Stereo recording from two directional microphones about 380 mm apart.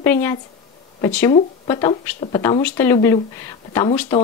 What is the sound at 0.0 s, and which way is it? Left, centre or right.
Speech, centre.